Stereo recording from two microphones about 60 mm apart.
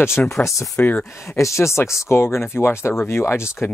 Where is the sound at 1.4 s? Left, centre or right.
Left.